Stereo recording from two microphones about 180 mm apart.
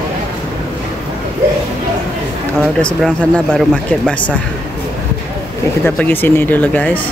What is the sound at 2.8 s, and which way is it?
Speech, 5° left (ahead or behind).